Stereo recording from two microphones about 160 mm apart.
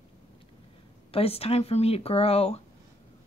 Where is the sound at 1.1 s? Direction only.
40° left (ahead or behind).